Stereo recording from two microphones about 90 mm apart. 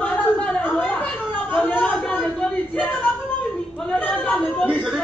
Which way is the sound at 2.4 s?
15° left (ahead or behind).